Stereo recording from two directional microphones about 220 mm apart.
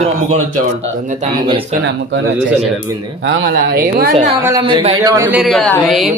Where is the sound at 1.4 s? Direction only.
25° right (ahead or behind).